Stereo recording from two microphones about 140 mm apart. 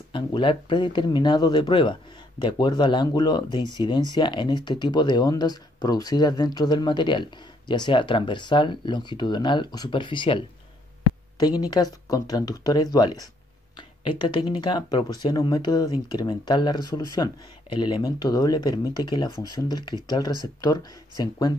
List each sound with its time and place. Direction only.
0.1 s speech: 35° left (ahead or behind)